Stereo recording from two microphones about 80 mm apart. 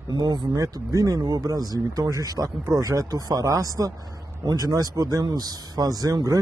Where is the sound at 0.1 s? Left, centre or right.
Right.